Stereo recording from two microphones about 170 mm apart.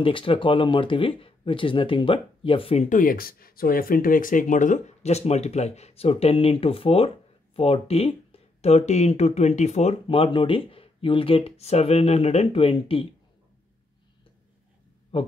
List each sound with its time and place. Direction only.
0.0 s speech: 30° left (ahead or behind)
2.9 s speech: 55° left (ahead or behind); by 13.1 s 35° left (ahead or behind)
15.1 s speech: 35° left (ahead or behind)